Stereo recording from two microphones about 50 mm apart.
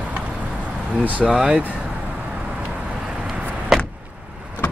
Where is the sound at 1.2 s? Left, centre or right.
Centre.